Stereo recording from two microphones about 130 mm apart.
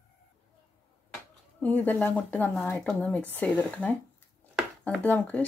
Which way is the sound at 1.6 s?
15° left (ahead or behind).